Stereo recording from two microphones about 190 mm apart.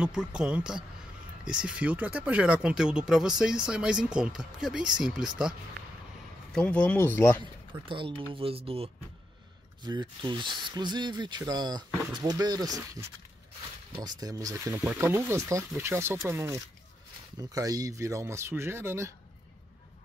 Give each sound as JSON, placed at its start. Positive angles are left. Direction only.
{"t": 0.0, "sound": "speech", "side_deg": -5}
{"t": 6.5, "sound": "speech", "side_deg": 5}
{"t": 7.8, "sound": "speech", "side_deg": -25}